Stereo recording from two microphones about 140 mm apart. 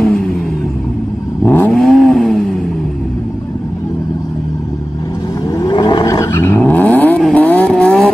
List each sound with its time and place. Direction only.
0.0 s vehicle: 5° left (ahead or behind)
1.4 s vehicle: 15° left (ahead or behind)
1.7 s vehicle: 5° left (ahead or behind)
5.5 s vehicle: 25° left (ahead or behind); by 8.1 s 5° left (ahead or behind)